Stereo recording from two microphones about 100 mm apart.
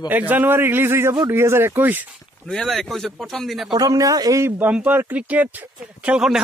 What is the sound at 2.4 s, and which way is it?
Speech, 5° left (ahead or behind).